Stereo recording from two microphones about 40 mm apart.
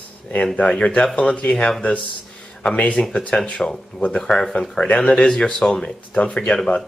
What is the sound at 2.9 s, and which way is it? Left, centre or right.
Speech, centre.